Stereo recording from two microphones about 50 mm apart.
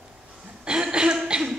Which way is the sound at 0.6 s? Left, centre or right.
Centre.